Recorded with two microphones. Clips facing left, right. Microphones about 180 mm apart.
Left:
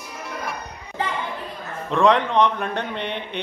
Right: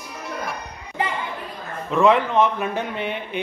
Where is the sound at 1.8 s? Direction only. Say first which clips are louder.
Right 1 dB; 5° right (ahead or behind).